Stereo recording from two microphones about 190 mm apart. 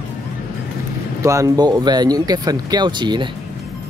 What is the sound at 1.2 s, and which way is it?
Speech, 15° right (ahead or behind).